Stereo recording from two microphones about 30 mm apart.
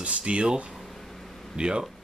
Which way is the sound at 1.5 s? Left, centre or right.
Right.